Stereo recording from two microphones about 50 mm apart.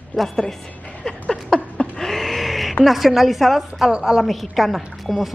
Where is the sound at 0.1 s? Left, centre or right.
Centre.